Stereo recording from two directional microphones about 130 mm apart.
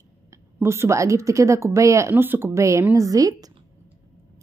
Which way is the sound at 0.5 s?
20° right (ahead or behind).